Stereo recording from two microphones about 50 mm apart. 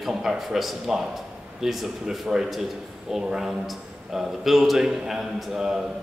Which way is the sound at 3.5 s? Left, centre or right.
Centre.